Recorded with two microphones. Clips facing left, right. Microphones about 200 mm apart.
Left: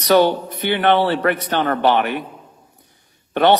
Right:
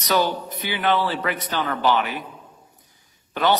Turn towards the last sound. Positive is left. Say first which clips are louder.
# left 6 dB
turn(degrees=60)  # may be behind; listen again after turning